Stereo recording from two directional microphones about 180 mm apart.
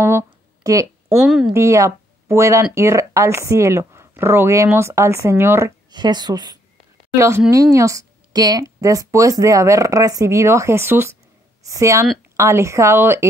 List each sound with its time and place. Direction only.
0.7 s speech: 15° right (ahead or behind)
1.2 s a woman's voice: centre (ahead or behind)
1.5 s speech: 15° right (ahead or behind)